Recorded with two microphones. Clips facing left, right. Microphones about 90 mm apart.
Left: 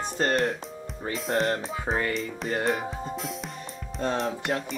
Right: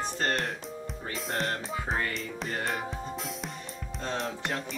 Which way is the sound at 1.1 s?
Centre (ahead or behind).